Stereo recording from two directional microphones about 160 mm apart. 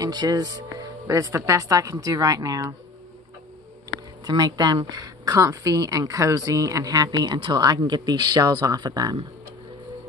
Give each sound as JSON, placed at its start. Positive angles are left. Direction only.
{"t": 0.0, "sound": "a woman's voice", "side_deg": -25}
{"t": 4.2, "sound": "a woman's voice", "side_deg": -25}